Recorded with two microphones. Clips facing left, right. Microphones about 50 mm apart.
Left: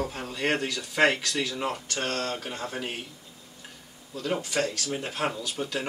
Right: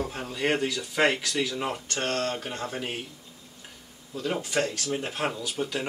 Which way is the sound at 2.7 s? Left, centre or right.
Centre.